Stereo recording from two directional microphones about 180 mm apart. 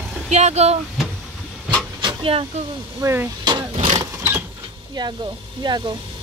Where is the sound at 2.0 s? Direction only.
30° right (ahead or behind).